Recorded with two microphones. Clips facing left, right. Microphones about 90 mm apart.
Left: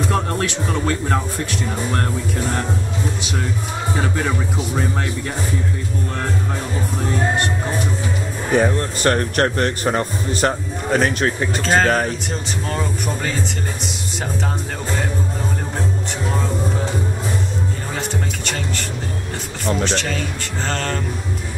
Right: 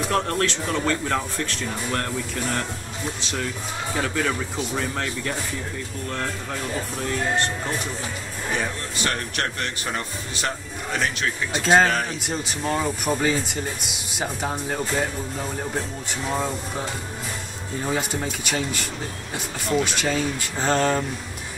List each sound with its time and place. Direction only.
0.1 s speech: 10° left (ahead or behind)
4.0 s speech: 15° left (ahead or behind)
8.5 s a man's voice: 45° left (ahead or behind)
11.6 s speech: 5° right (ahead or behind)
17.9 s speech: 5° right (ahead or behind)